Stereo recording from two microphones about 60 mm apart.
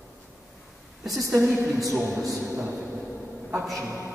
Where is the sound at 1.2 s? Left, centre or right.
Right.